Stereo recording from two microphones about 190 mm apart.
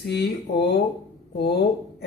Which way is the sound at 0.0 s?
60° left (ahead or behind).